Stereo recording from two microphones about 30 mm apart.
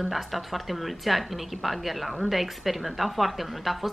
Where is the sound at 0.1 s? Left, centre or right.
Centre.